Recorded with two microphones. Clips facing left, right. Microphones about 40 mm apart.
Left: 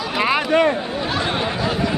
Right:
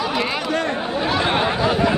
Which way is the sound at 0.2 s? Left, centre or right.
Centre.